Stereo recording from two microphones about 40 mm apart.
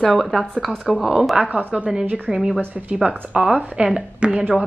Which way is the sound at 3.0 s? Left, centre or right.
Right.